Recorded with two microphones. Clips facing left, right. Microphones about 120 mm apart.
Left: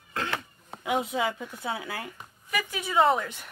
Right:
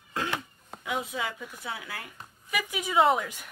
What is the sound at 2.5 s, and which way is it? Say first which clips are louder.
Speech: even; 10° right (ahead or behind).